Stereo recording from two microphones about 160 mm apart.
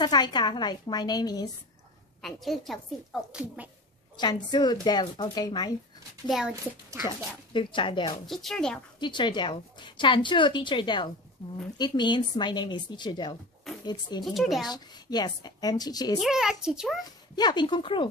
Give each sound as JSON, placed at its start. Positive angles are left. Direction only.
{"t": 0.0, "sound": "a woman's voice", "side_deg": 25}
{"t": 2.2, "sound": "a woman's voice", "side_deg": 0}
{"t": 4.2, "sound": "a woman's voice", "side_deg": 25}
{"t": 6.2, "sound": "a woman's voice", "side_deg": 0}
{"t": 7.0, "sound": "speech", "side_deg": -15}
{"t": 7.5, "sound": "speech", "side_deg": 30}
{"t": 8.3, "sound": "a woman's voice", "side_deg": 0}
{"t": 9.0, "sound": "a woman's voice", "side_deg": 30}
{"t": 13.7, "sound": "a sound", "side_deg": 0}
{"t": 14.2, "sound": "a woman's voice", "side_deg": 0}
{"t": 14.7, "sound": "a woman's voice", "side_deg": 25}
{"t": 16.2, "sound": "a woman's voice", "side_deg": -5}
{"t": 17.4, "sound": "a woman's voice", "side_deg": 25}